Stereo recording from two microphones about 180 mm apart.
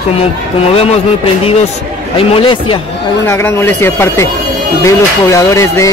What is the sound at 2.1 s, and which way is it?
Mantra, 30° left (ahead or behind).